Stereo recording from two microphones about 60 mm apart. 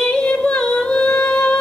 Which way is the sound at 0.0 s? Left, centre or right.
Centre.